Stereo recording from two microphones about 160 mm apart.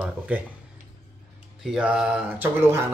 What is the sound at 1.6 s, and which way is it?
Mantra, 5° right (ahead or behind).